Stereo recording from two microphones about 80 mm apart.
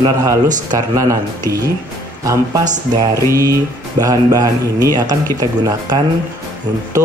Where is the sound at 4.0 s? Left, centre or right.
Right.